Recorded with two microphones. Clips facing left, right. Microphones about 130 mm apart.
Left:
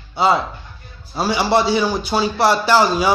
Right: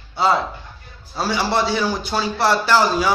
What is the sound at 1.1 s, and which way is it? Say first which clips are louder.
A man's voice: left 3 dB; 15° left (ahead or behind).